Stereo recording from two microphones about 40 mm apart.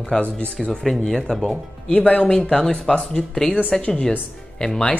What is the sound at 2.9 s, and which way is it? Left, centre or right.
A woman's voice, left.